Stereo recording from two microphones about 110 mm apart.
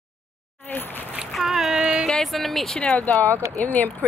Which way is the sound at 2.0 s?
5° left (ahead or behind).